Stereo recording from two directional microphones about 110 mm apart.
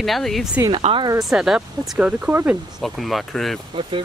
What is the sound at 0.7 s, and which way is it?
Speech, 50° right (ahead or behind).